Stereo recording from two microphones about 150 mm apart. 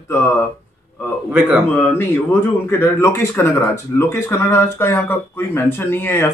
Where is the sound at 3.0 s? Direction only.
15° left (ahead or behind).